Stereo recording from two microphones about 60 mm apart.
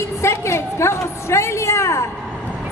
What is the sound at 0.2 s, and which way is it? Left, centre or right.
A woman's voice, left.